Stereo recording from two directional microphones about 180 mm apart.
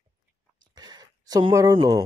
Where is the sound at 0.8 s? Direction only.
20° right (ahead or behind).